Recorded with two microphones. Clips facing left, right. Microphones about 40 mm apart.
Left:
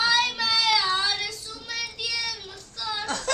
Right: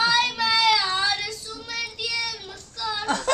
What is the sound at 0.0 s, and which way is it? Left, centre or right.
Child singing, centre.